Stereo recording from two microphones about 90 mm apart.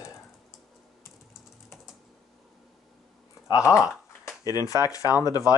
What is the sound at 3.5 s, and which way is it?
Speech, 35° left (ahead or behind).